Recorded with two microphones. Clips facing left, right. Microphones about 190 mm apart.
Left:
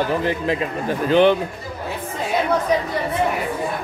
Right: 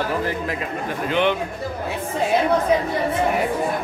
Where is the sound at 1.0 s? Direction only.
35° left (ahead or behind).